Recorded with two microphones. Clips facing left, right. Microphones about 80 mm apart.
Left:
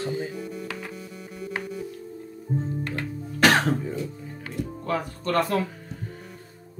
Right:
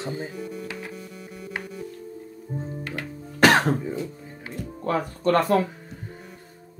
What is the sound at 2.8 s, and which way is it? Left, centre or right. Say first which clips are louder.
Music: left 2 dB; centre.